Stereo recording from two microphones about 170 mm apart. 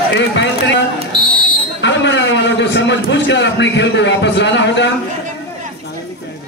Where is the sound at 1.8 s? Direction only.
90° left.